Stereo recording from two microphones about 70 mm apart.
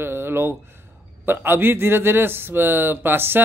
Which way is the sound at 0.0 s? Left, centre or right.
Right.